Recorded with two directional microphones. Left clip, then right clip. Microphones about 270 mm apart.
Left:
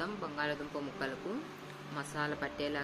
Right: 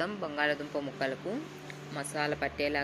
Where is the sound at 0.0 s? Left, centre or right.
Centre.